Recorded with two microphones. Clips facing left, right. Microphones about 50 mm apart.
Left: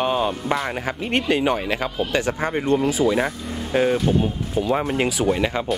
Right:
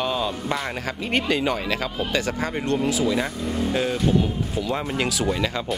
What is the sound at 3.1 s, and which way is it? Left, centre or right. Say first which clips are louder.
Speech: left 2 dB; left.